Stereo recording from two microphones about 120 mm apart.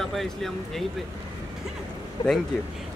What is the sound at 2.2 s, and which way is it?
Speech, 40° left (ahead or behind).